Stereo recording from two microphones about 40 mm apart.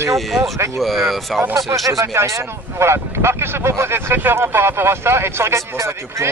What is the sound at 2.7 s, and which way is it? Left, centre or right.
Speech, right.